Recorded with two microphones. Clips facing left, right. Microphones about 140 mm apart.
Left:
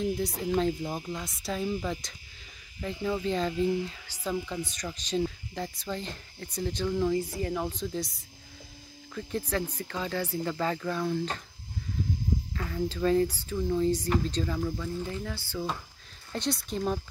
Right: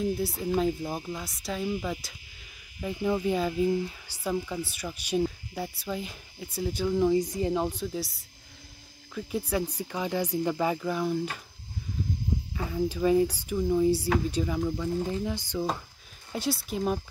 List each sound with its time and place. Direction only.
0.0 s speech: 5° right (ahead or behind)
2.8 s speech: 15° right (ahead or behind)
7.8 s speech: 5° right (ahead or behind)
12.5 s speech: 15° right (ahead or behind)
16.3 s speech: 5° right (ahead or behind)